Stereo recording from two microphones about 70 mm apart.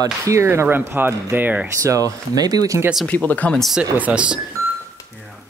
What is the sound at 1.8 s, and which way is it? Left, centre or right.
Speech, right.